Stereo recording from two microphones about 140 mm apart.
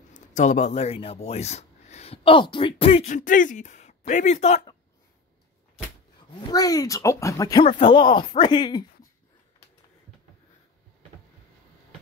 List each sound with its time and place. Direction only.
0.3 s speech: 60° left (ahead or behind)
3.1 s speech: 65° left (ahead or behind)
6.5 s speech: 25° left (ahead or behind)
7.6 s speech: 35° left (ahead or behind)